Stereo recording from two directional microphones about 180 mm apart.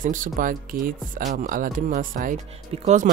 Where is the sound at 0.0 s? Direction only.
45° right (ahead or behind).